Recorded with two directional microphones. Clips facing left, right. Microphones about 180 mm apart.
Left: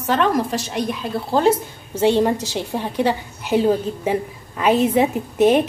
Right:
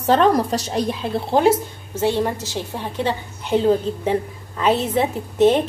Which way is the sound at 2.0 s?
20° left (ahead or behind).